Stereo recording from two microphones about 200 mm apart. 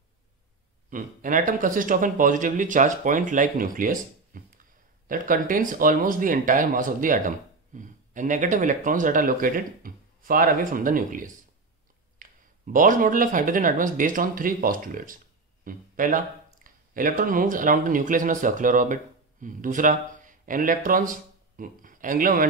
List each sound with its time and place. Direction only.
0.8 s speech: 40° right (ahead or behind)